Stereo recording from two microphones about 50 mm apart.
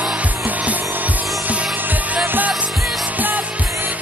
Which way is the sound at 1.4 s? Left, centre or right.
Right.